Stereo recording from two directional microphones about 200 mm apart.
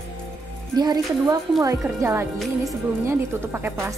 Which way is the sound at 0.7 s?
20° right (ahead or behind).